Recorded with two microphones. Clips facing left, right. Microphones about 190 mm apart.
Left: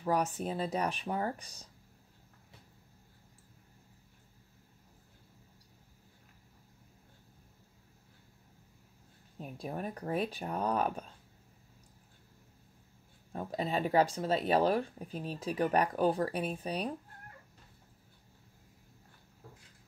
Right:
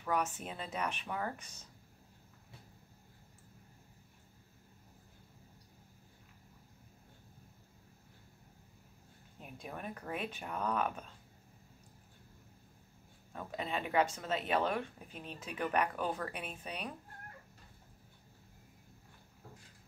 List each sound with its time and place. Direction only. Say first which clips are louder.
0.0 s speech: left 4 dB; 35° left (ahead or behind)
9.4 s speech: left 6 dB; 35° left (ahead or behind)
13.3 s speech: left 5 dB; 35° left (ahead or behind)